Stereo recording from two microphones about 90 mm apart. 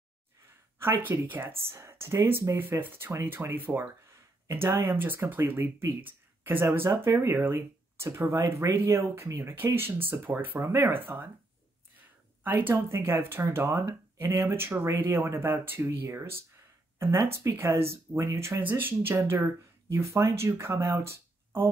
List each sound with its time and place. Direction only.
0.7 s speech: 25° right (ahead or behind)
12.4 s speech: 25° right (ahead or behind)
18.6 s speech: 25° right (ahead or behind)